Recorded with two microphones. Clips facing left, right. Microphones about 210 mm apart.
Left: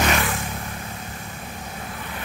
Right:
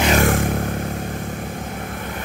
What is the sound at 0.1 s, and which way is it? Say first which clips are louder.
Vehicle: right 8 dB; 50° right (ahead or behind).